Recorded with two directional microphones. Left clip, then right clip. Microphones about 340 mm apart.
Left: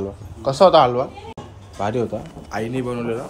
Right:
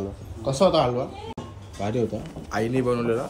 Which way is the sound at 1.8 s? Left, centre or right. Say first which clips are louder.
Left 4 dB; centre.